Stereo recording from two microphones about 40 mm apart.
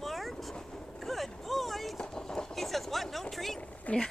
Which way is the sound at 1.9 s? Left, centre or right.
Centre.